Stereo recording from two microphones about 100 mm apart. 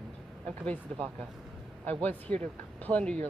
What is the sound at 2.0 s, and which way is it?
Speech, 15° left (ahead or behind).